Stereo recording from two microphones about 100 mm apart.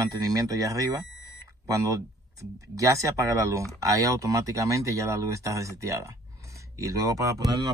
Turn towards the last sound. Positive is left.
turn(degrees=-35)  # may be behind; listen again after turning